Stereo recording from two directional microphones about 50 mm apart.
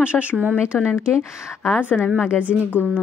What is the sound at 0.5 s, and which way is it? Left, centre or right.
Speech, centre.